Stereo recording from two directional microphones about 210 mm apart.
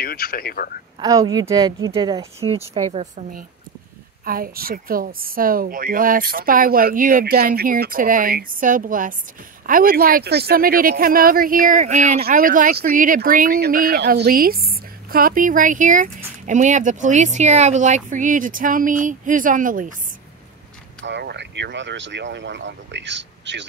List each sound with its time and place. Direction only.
0.0 s speech: 45° left (ahead or behind)
1.0 s speech: 20° right (ahead or behind); by 3.4 s 35° right (ahead or behind)
4.2 s a woman's voice: 45° right (ahead or behind)
12.2 s a woman's voice: 45° right (ahead or behind)
21.0 s speech: 55° right (ahead or behind)